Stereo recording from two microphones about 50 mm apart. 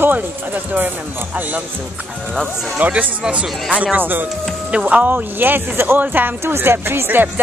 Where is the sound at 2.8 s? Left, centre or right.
Right.